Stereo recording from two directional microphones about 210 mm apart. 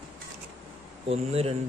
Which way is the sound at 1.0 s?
30° right (ahead or behind).